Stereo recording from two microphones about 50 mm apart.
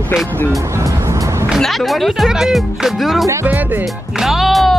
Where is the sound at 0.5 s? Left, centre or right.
Right.